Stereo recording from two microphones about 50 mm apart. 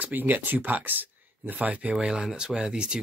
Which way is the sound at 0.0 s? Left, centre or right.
Right.